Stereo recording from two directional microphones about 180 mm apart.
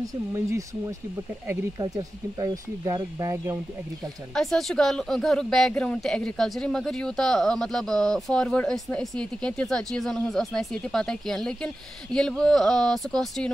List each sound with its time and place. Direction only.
0.0 s speech: 15° right (ahead or behind)
4.3 s speech: centre (ahead or behind)